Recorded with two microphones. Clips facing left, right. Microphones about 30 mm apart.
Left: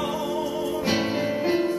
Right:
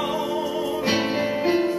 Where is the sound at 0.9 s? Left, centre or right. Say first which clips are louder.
Right 2 dB; centre.